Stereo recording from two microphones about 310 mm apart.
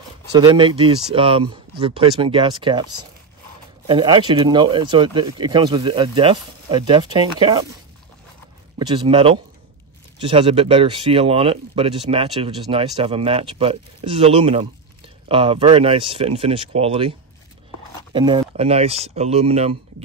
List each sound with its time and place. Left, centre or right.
0.4 s speech: centre
8.7 s speech: centre
18.1 s speech: centre